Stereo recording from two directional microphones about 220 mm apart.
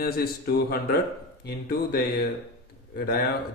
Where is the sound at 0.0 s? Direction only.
45° left (ahead or behind).